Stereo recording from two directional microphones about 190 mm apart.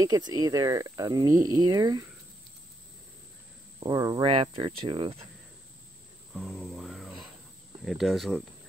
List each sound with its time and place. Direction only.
0.0 s speech: 20° right (ahead or behind)
3.8 s speech: 20° right (ahead or behind)
6.3 s cricket: centre (ahead or behind)
7.8 s speech: centre (ahead or behind)